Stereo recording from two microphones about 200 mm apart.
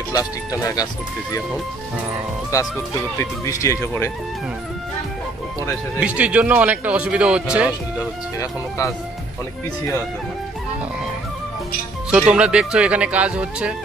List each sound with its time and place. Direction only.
0.1 s speech: 15° left (ahead or behind)
2.5 s speech: 15° left (ahead or behind)
5.9 s speech: 5° right (ahead or behind)
8.4 s speech: 15° left (ahead or behind)
12.1 s speech: 5° right (ahead or behind)